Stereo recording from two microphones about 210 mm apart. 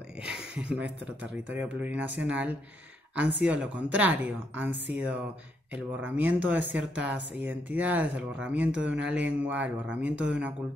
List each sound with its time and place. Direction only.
0.6 s speech: 5° right (ahead or behind)